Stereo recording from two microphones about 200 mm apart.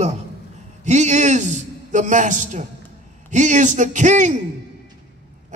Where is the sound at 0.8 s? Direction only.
35° right (ahead or behind).